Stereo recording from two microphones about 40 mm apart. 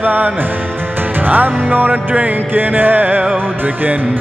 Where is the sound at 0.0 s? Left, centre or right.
Right.